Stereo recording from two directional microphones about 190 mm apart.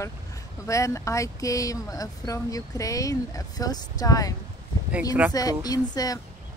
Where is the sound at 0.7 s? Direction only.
15° left (ahead or behind).